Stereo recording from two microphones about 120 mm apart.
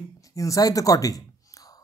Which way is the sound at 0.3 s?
25° left (ahead or behind).